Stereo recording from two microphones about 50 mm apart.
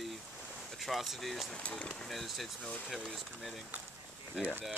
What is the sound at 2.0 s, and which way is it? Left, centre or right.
Speech, centre.